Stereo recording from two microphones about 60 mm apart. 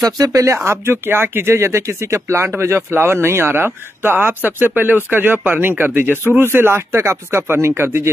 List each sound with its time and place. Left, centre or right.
0.0 s speech: right
0.7 s speech: right